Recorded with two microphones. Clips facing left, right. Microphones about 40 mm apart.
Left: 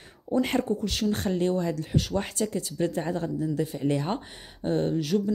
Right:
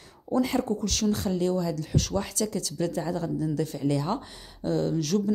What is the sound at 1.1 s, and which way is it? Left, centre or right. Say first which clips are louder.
Speech: left 1 dB; left.